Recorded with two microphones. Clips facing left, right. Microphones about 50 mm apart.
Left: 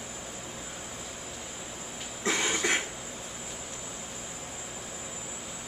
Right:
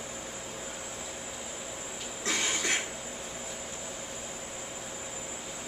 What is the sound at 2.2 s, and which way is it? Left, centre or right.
Cough, left.